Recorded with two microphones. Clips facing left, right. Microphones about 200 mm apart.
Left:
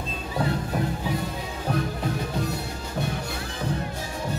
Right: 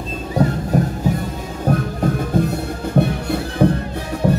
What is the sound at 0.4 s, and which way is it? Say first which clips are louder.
Music: right 8 dB; 45° right (ahead or behind).